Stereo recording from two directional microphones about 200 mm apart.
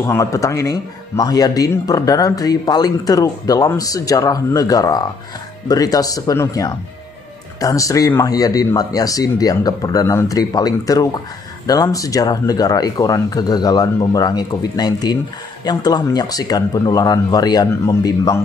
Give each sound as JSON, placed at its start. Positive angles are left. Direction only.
{"t": 0.0, "sound": "speech", "side_deg": 15}